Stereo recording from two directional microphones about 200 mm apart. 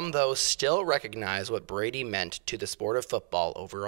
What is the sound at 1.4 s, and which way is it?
Speech, 30° right (ahead or behind).